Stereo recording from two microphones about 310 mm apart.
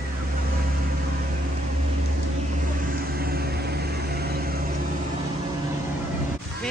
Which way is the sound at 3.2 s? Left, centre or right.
Right.